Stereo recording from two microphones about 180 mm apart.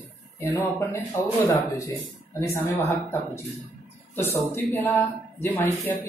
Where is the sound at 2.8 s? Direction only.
15° left (ahead or behind).